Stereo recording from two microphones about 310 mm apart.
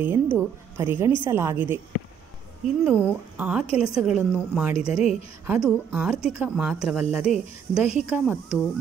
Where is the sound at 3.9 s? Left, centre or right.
Centre.